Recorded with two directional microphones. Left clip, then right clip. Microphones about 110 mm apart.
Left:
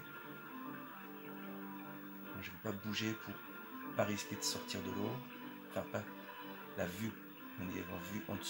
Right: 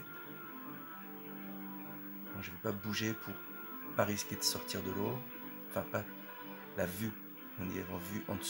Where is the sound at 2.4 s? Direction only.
65° right (ahead or behind).